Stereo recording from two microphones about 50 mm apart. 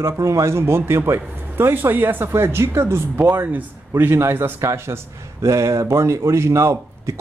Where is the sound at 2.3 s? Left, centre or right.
Right.